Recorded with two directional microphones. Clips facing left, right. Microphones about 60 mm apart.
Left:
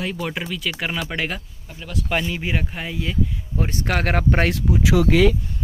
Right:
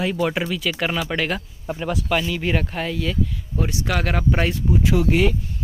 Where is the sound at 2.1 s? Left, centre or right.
Left.